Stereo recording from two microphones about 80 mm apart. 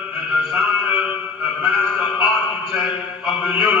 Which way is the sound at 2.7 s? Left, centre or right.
Centre.